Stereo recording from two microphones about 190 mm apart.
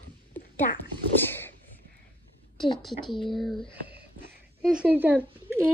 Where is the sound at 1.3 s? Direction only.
10° left (ahead or behind).